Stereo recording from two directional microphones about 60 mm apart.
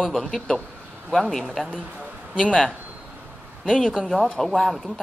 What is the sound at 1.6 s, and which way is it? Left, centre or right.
Speech, right.